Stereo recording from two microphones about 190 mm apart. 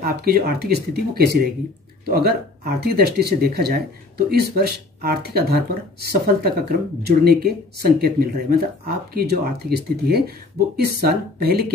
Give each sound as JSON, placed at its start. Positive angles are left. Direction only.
{"t": 0.0, "sound": "speech", "side_deg": -55}